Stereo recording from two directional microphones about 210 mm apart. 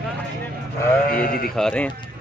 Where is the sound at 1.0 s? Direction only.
45° left (ahead or behind).